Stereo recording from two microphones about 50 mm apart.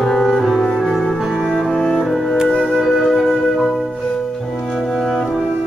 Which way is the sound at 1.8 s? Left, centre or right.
Centre.